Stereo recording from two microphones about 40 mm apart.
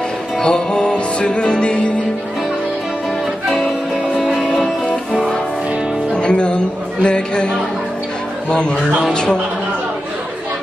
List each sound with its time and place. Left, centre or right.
0.4 s music: left
4.2 s music: centre
6.1 s chatter: left
8.5 s speech: left